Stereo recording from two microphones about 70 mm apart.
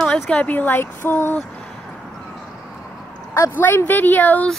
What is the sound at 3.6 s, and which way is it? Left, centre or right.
Speech, left.